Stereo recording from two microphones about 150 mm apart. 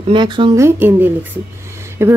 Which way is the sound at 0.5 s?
15° right (ahead or behind).